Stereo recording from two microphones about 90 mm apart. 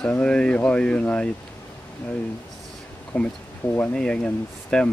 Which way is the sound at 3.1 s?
15° left (ahead or behind).